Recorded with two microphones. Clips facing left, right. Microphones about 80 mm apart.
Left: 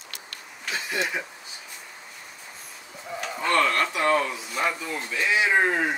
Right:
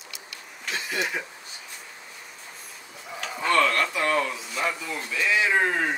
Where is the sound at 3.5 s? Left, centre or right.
Centre.